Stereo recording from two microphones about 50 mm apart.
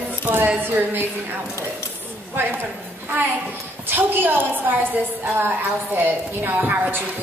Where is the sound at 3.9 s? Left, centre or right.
Right.